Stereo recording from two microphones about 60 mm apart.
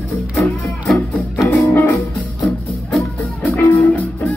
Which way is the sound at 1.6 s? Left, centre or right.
Left.